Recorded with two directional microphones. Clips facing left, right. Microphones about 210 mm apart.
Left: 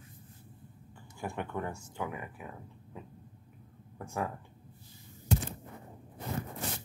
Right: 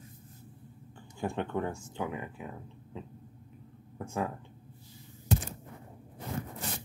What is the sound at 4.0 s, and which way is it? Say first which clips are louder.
Speech: right 2 dB; 25° right (ahead or behind).